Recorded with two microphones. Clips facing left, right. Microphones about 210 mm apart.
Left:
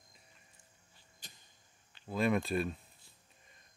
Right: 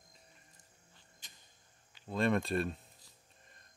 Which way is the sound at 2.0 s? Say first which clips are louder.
Even; 5° left (ahead or behind).